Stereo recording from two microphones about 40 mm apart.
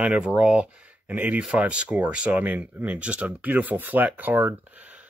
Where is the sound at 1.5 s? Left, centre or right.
Right.